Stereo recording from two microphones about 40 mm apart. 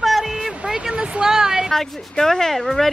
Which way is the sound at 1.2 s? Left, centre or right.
Centre.